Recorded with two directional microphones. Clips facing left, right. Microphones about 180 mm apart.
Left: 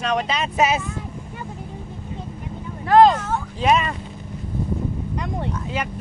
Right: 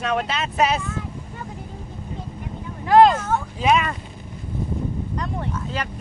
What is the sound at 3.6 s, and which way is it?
Speech, centre (ahead or behind).